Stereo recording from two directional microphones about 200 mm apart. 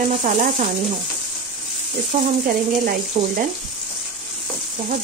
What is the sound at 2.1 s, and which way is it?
Speech, 45° right (ahead or behind).